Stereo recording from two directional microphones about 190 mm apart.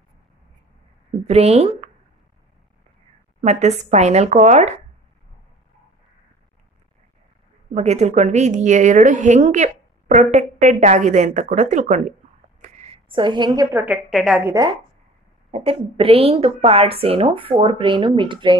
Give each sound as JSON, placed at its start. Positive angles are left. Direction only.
{"t": 1.2, "sound": "speech", "side_deg": -35}
{"t": 3.3, "sound": "a woman's voice", "side_deg": -35}
{"t": 7.7, "sound": "a woman's voice", "side_deg": -35}
{"t": 14.1, "sound": "a woman's voice", "side_deg": 0}
{"t": 14.4, "sound": "a woman's voice", "side_deg": -20}
{"t": 15.5, "sound": "a woman's voice", "side_deg": -30}